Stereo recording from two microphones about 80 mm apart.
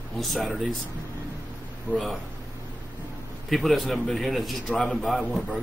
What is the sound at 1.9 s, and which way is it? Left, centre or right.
Speech, right.